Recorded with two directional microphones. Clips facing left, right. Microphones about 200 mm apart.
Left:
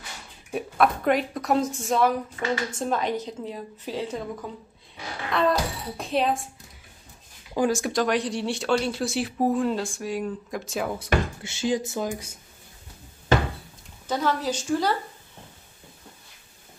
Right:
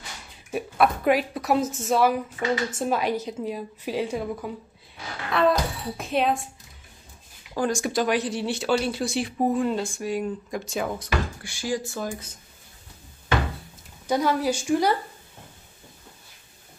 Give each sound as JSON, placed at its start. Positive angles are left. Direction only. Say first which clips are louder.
{"t": 0.5, "sound": "a woman's voice", "louder": "even", "side_deg": -5}
{"t": 7.5, "sound": "speech", "louder": "left 1 dB", "side_deg": 5}
{"t": 11.4, "sound": "speech", "louder": "left 3 dB", "side_deg": 20}
{"t": 14.0, "sound": "a woman's voice", "louder": "right 3 dB", "side_deg": -10}